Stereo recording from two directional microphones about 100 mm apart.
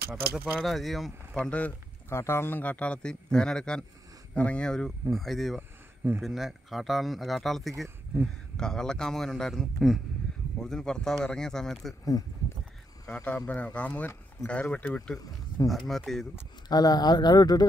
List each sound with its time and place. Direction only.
0.3 s speech: 20° right (ahead or behind)
0.6 s speech: centre (ahead or behind)
1.4 s speech: 10° left (ahead or behind)
2.0 s speech: 25° left (ahead or behind); by 5.6 s centre (ahead or behind)
5.6 s a sound: 20° right (ahead or behind)
6.2 s speech: centre (ahead or behind)
12.0 s speech: 35° left (ahead or behind)
13.1 s speech: 10° left (ahead or behind)
15.6 s speech: 40° left (ahead or behind)
16.1 s speech: 5° left (ahead or behind)
16.6 s speech: 40° left (ahead or behind)